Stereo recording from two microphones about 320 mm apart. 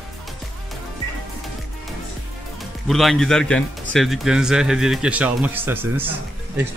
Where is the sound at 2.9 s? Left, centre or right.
Centre.